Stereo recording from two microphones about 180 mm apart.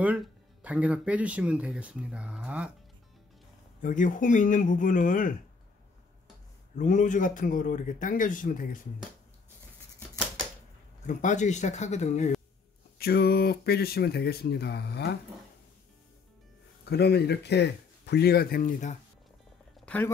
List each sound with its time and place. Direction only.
0.0 s speech: 5° right (ahead or behind)
3.8 s speech: 45° left (ahead or behind)
6.8 s speech: 45° left (ahead or behind)
11.1 s speech: 45° left (ahead or behind)
13.0 s speech: 60° left (ahead or behind)
16.9 s speech: 65° left (ahead or behind); by 18.9 s 45° left (ahead or behind)
19.8 s a sound: 10° left (ahead or behind)